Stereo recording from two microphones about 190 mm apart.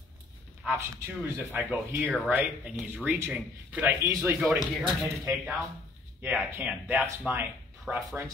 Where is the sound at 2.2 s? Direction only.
10° right (ahead or behind).